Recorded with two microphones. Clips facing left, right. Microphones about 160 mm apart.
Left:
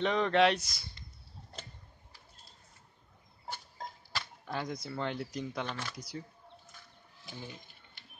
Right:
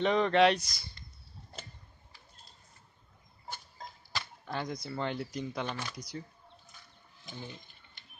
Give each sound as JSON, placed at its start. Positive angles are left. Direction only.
{"t": 0.0, "sound": "speech", "side_deg": 0}
{"t": 4.1, "sound": "speech", "side_deg": 0}
{"t": 7.2, "sound": "a sound", "side_deg": 5}